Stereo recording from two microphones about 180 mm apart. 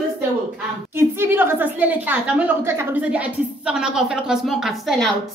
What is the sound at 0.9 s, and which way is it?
A woman's voice, 10° right (ahead or behind).